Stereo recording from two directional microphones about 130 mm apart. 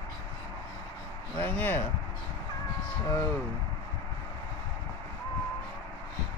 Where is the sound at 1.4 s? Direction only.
15° left (ahead or behind).